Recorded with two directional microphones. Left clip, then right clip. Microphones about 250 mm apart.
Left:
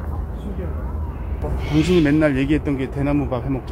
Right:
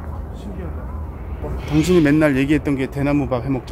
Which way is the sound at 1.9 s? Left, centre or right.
Right.